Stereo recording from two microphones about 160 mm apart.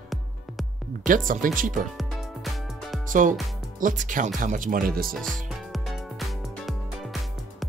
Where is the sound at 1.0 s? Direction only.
55° right (ahead or behind).